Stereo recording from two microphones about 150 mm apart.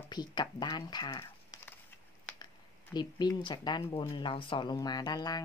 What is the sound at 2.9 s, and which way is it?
Speech, 30° left (ahead or behind).